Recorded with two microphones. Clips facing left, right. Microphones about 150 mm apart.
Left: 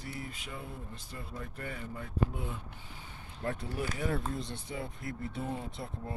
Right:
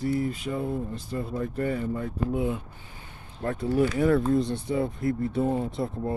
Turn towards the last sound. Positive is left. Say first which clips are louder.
# right 12 dB
turn(degrees=-45)  # may be behind; listen again after turning